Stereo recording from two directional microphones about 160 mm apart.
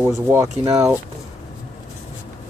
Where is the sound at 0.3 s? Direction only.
15° right (ahead or behind).